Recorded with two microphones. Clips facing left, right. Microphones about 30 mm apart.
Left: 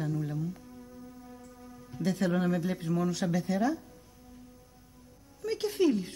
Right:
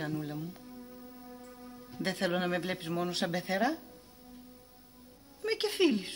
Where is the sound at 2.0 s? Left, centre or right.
Right.